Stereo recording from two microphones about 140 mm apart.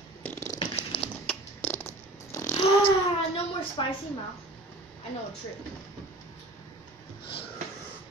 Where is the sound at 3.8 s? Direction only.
35° left (ahead or behind).